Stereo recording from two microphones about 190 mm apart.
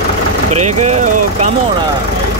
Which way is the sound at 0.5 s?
35° right (ahead or behind).